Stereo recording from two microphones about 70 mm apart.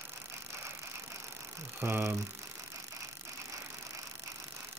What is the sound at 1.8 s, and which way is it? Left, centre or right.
Speech, right.